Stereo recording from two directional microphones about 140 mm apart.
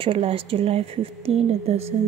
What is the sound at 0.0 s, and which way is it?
Speech, 40° right (ahead or behind).